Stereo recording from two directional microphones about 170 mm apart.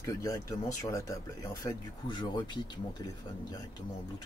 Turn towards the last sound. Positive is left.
turn(degrees=25)  # may be behind; listen again after turning